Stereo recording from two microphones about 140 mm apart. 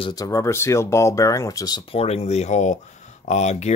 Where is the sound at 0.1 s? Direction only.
25° left (ahead or behind).